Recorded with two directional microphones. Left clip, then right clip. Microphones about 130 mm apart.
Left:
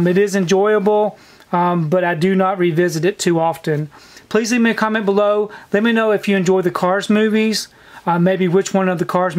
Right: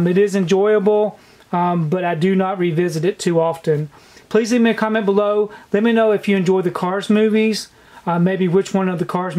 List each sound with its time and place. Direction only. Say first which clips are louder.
0.0 s speech: left 1 dB; 30° left (ahead or behind)